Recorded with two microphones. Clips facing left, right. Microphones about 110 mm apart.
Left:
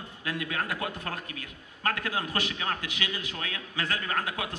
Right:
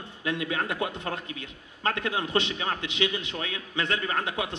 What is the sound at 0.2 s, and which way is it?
A man's voice, 25° right (ahead or behind).